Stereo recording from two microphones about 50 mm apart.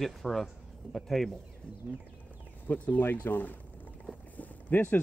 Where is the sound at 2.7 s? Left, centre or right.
Left.